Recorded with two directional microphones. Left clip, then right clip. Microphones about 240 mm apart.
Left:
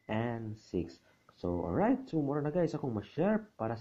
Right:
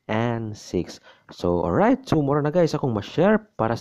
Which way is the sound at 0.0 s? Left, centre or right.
Right.